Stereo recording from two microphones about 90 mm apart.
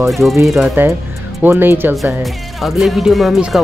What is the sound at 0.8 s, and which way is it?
Speech, 25° right (ahead or behind).